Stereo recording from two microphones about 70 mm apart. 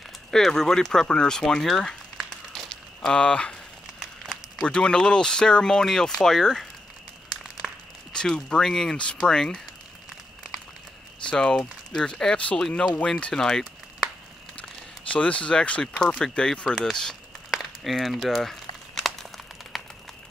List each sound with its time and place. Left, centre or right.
0.3 s speech: centre
2.2 s a sound: centre
3.2 s speech: centre
4.6 s speech: centre
7.6 s a sound: centre
8.1 s speech: centre
11.2 s speech: centre
14.6 s speech: centre
17.5 s crumpling: centre